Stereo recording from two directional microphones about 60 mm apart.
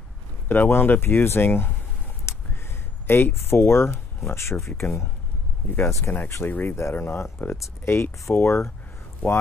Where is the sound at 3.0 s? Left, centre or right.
Left.